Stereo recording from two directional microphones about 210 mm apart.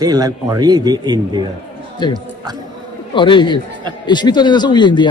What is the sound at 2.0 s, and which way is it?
Speech, 20° left (ahead or behind).